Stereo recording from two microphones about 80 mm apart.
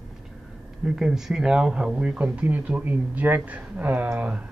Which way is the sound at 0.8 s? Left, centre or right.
Centre.